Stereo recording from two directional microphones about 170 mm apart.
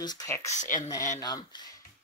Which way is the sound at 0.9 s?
20° left (ahead or behind).